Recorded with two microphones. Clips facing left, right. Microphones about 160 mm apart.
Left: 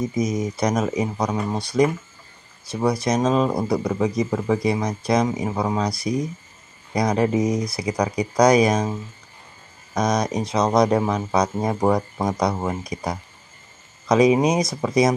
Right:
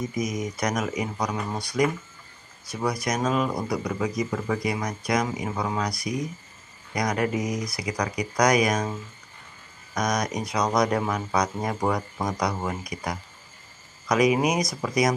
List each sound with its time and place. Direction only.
0.1 s speech: 30° left (ahead or behind)
9.9 s speech: 30° left (ahead or behind)